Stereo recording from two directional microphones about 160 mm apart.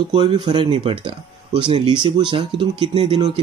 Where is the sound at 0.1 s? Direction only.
30° right (ahead or behind).